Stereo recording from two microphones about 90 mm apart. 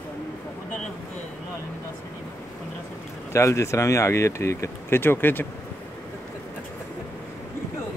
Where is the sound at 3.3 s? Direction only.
35° left (ahead or behind).